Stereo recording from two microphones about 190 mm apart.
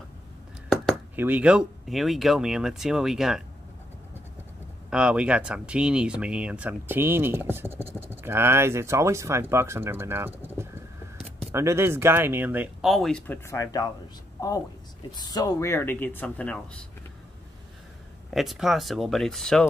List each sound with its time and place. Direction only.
1.1 s speech: 10° right (ahead or behind)
4.8 s speech: 5° right (ahead or behind)
13.5 s speech: 20° left (ahead or behind)
15.0 s speech: 20° left (ahead or behind); by 16.8 s 5° left (ahead or behind)
18.3 s speech: centre (ahead or behind)